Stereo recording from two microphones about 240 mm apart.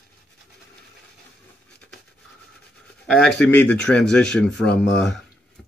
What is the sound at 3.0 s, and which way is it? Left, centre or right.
Speech, centre.